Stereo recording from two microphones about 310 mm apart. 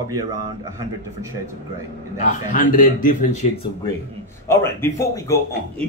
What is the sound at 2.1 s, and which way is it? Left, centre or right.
A man's voice, left.